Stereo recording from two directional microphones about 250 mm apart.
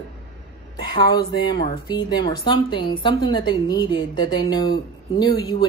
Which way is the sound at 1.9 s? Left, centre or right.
Centre.